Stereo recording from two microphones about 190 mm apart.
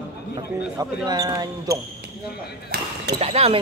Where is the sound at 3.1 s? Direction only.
30° right (ahead or behind).